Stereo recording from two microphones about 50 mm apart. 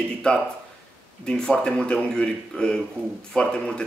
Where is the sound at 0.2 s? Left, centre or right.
Centre.